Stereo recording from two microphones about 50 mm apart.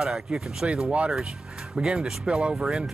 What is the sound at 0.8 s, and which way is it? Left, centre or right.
Speech, centre.